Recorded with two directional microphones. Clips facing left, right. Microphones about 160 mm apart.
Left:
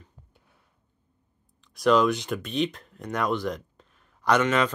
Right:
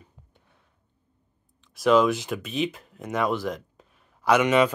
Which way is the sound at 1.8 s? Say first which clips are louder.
Right 1 dB; centre (ahead or behind).